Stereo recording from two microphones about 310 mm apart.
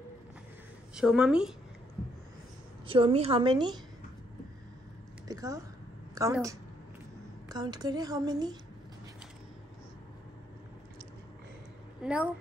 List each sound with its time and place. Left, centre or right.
0.9 s speech: centre
2.9 s a woman's voice: centre
5.3 s a sound: centre
6.1 s a woman's voice: centre
12.0 s speech: centre